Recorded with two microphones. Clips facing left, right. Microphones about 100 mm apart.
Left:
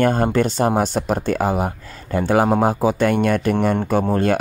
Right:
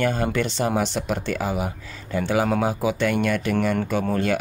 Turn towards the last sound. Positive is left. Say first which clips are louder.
# left 5 dB
turn(degrees=35)  # may be behind; listen again after turning